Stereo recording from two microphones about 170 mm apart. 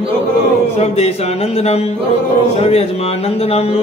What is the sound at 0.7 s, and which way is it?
Music, 40° left (ahead or behind).